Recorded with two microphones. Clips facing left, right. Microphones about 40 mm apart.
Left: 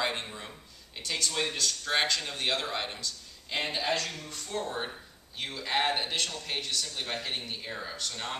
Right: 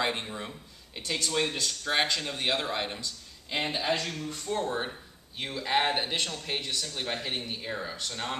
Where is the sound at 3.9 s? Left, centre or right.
Centre.